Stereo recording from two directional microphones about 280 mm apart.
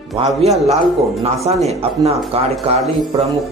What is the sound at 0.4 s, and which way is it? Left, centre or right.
Speech, right.